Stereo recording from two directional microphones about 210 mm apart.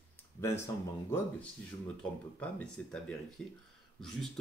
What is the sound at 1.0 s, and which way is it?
Speech, 10° left (ahead or behind).